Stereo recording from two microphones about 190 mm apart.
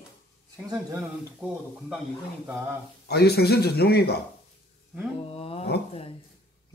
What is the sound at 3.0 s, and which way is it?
Speech, 60° left (ahead or behind).